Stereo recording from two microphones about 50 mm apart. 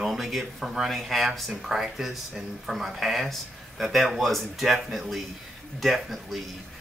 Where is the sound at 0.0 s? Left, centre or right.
Centre.